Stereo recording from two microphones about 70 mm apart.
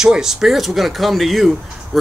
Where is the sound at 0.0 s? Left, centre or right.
Centre.